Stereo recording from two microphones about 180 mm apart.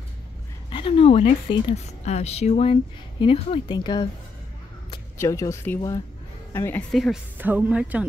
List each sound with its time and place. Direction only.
0.7 s a woman's voice: 30° left (ahead or behind)
5.1 s speech: 15° left (ahead or behind)
6.9 s speech: centre (ahead or behind)
7.3 s speech: 10° right (ahead or behind)